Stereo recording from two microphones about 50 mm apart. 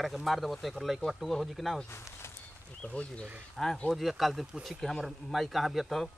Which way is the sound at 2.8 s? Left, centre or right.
Left.